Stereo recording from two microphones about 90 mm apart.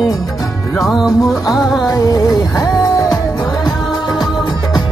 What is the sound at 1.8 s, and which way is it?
Music, 45° left (ahead or behind).